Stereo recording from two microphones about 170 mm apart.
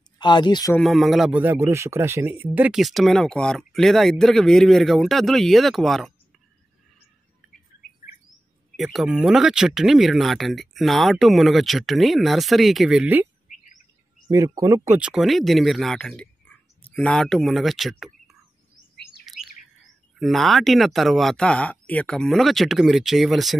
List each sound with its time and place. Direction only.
0.2 s speech: 25° left (ahead or behind)
0.7 s a man's voice: centre (ahead or behind)
7.4 s bird: 5° left (ahead or behind)
8.7 s a man's voice: centre (ahead or behind)
14.3 s speech: 20° right (ahead or behind)
15.0 s speech: 5° right (ahead or behind)
19.2 s chirp: centre (ahead or behind)
20.2 s a man's voice: centre (ahead or behind)